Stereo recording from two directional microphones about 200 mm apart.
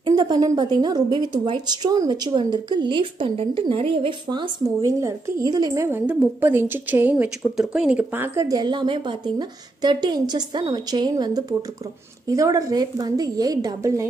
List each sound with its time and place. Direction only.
0.0 s a woman's voice: 20° right (ahead or behind)